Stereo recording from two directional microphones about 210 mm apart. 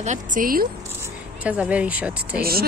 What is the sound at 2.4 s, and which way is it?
Speech, 45° right (ahead or behind).